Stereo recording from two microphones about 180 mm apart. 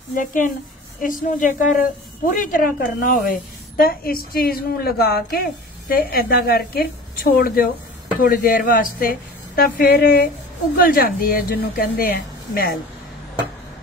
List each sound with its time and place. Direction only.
0.1 s a woman's voice: 45° left (ahead or behind)